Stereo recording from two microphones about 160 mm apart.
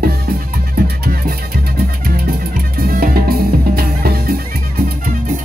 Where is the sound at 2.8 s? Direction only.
70° right (ahead or behind).